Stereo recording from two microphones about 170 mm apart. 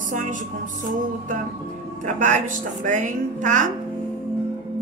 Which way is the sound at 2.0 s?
45° right (ahead or behind).